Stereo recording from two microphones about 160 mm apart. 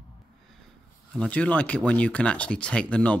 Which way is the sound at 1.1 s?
5° left (ahead or behind).